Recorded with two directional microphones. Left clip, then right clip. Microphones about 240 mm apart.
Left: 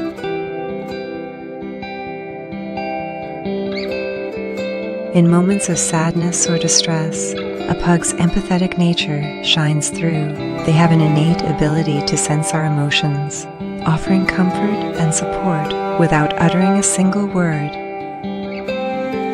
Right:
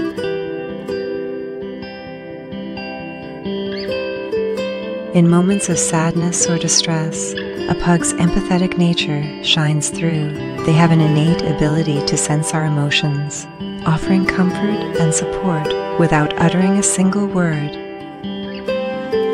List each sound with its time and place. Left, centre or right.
5.1 s a woman's voice: centre
16.0 s a woman's voice: centre